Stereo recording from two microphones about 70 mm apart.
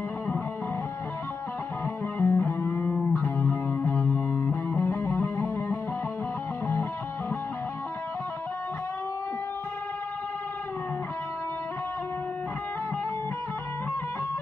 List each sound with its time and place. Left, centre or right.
2.1 s music: left